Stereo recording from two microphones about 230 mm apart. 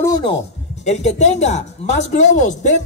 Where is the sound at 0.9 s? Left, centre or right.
Left.